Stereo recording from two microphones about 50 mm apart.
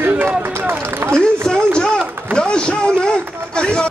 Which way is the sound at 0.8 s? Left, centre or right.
Right.